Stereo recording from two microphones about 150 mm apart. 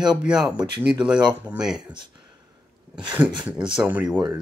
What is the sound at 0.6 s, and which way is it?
Speech, 30° right (ahead or behind).